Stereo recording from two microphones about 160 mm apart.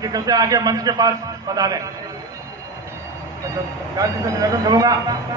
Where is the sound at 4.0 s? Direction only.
20° right (ahead or behind).